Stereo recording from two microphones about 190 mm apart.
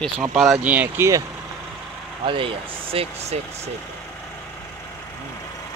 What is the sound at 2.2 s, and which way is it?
Speech, 25° right (ahead or behind).